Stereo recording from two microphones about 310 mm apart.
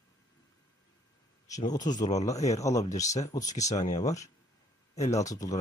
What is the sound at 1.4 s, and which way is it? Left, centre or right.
Speech, centre.